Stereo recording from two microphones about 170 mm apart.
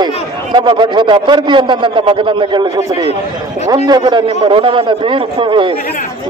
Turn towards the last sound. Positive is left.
turn(degrees=-30)  # may be behind; listen again after turning